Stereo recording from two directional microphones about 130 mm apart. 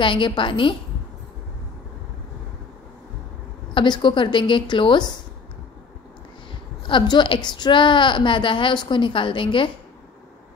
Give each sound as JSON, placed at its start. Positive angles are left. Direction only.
{"t": 0.0, "sound": "a woman's voice", "side_deg": 40}
{"t": 3.7, "sound": "a woman's voice", "side_deg": 35}
{"t": 6.9, "sound": "a woman's voice", "side_deg": 35}